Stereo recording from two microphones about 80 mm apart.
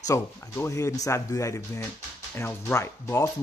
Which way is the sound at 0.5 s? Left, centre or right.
Left.